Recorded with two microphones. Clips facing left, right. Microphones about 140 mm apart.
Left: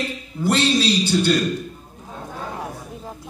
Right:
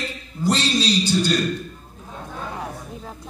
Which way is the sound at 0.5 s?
55° left (ahead or behind).